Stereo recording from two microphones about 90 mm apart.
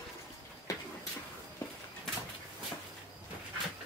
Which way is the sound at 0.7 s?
40° left (ahead or behind).